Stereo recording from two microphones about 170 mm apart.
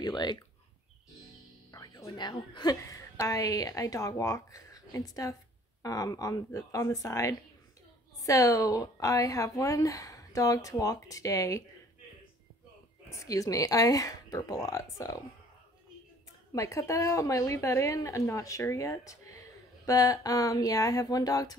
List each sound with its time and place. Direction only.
0.0 s speech: 25° left (ahead or behind)
1.7 s a woman's voice: 20° left (ahead or behind)
13.1 s speech: 20° left (ahead or behind)
16.5 s a woman's voice: 20° left (ahead or behind)